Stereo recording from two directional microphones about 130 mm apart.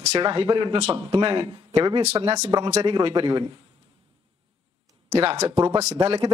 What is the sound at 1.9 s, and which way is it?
Speech, 55° right (ahead or behind).